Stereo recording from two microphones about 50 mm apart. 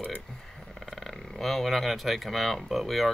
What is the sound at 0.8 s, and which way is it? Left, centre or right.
Speech, centre.